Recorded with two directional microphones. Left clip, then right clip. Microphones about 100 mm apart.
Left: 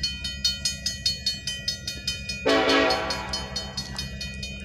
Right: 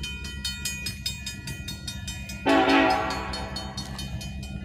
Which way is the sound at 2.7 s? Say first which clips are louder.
Even; 35° left (ahead or behind).